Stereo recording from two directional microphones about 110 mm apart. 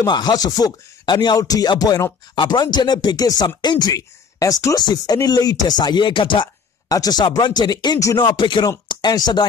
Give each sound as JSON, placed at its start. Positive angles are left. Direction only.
{"t": 0.0, "sound": "speech", "side_deg": 40}
{"t": 6.9, "sound": "speech", "side_deg": 35}